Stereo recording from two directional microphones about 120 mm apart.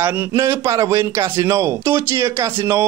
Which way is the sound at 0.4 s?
25° right (ahead or behind).